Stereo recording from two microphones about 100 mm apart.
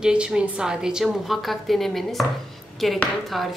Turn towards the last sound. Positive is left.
turn(degrees=0)  # may be behind; listen again after turning